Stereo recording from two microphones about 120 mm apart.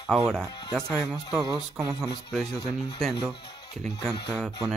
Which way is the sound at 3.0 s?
5° left (ahead or behind).